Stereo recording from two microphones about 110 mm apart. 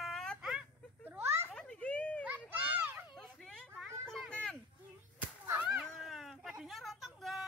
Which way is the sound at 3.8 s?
Centre (ahead or behind).